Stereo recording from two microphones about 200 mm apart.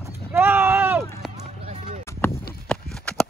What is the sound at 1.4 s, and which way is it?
Run, 35° right (ahead or behind).